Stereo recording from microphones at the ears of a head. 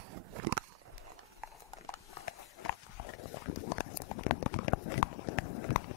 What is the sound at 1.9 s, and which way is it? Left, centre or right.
Horse, left.